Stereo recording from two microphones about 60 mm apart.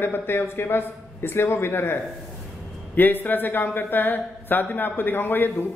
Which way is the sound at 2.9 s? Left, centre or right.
Left.